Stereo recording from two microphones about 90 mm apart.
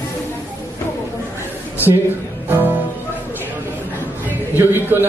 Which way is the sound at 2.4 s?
20° right (ahead or behind).